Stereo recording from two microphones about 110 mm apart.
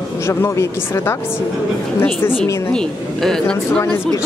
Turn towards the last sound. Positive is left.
turn(degrees=5)  # may be behind; listen again after turning